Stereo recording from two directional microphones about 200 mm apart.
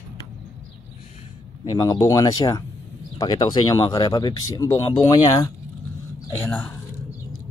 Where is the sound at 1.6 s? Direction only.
20° left (ahead or behind).